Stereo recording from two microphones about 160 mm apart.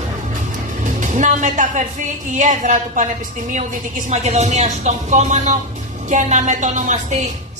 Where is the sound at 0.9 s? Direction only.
50° right (ahead or behind).